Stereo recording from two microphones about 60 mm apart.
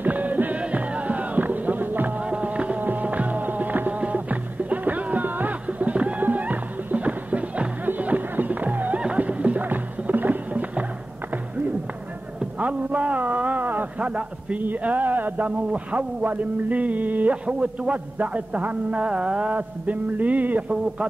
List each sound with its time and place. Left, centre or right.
0.0 s music: right
12.4 s a sound: right
14.0 s a man's voice: centre